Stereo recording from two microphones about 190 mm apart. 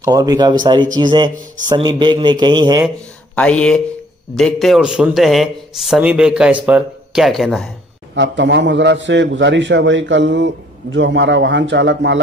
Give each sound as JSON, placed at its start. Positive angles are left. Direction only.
{"t": 0.0, "sound": "a man's voice", "side_deg": -20}
{"t": 3.3, "sound": "a man's voice", "side_deg": 5}
{"t": 8.1, "sound": "a man's voice", "side_deg": -70}